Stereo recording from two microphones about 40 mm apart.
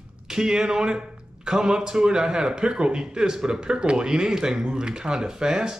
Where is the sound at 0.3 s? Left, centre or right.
Centre.